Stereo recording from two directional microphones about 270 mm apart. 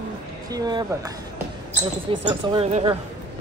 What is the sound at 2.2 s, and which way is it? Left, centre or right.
Speech, right.